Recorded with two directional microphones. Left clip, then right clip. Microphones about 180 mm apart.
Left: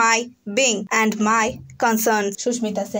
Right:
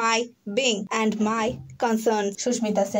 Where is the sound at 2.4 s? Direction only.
35° left (ahead or behind).